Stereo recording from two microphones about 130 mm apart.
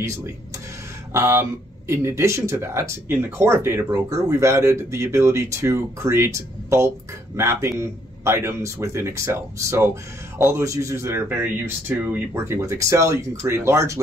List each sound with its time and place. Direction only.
1.1 s speech: 20° right (ahead or behind)